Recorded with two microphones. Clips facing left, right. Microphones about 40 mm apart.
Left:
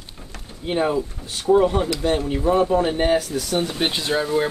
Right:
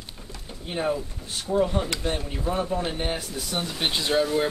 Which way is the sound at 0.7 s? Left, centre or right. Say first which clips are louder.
Left 6 dB; left.